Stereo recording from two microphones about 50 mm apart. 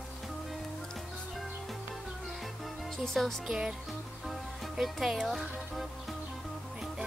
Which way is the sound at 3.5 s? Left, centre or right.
Centre.